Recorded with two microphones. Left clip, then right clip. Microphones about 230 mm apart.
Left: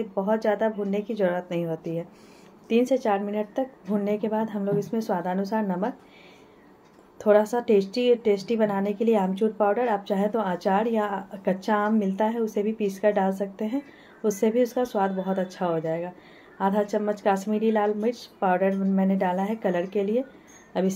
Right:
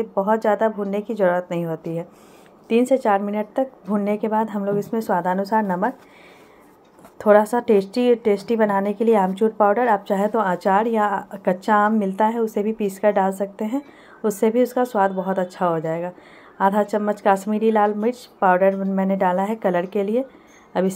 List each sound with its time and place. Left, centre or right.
0.1 s a woman's voice: centre
7.2 s a woman's voice: centre